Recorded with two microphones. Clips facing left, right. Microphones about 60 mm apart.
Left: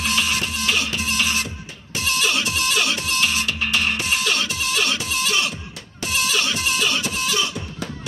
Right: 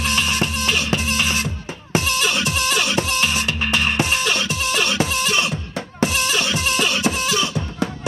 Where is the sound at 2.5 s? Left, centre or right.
Right.